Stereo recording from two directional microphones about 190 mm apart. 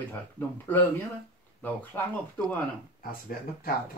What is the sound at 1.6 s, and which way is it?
Speech, 10° left (ahead or behind).